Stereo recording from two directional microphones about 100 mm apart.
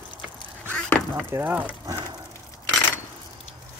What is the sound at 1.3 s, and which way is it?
Speech, 20° right (ahead or behind).